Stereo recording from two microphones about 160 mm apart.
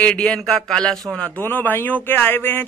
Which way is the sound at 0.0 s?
5° left (ahead or behind).